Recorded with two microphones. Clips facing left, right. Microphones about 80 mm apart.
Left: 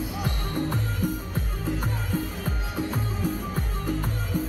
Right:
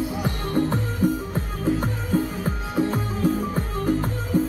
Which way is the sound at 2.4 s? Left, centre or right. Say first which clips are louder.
Right 6 dB; right.